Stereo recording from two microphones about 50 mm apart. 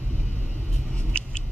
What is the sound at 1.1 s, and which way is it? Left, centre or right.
Vehicle, left.